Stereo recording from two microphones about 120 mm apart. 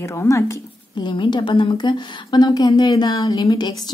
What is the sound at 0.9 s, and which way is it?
A woman's voice, 40° left (ahead or behind).